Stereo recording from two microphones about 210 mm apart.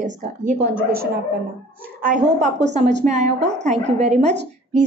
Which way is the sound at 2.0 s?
35° right (ahead or behind).